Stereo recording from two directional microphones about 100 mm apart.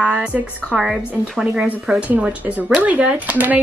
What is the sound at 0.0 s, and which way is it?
Speech, 10° right (ahead or behind).